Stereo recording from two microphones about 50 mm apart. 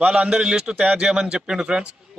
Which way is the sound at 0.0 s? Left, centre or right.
Centre.